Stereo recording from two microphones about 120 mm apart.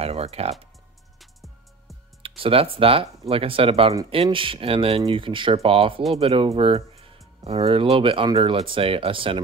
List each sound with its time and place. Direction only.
0.0 s speech: 60° right (ahead or behind)
1.2 s music: centre (ahead or behind)
2.2 s speech: 50° right (ahead or behind)